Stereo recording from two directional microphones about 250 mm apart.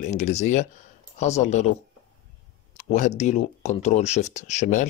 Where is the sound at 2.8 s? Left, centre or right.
Left.